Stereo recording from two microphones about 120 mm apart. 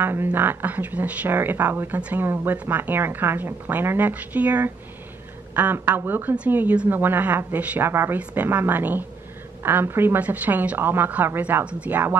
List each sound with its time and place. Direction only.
0.0 s speech: 15° right (ahead or behind)